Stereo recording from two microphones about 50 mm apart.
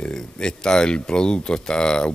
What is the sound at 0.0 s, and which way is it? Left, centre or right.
Speech, centre.